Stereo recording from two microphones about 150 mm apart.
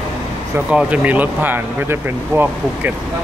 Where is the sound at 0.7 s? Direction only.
10° right (ahead or behind).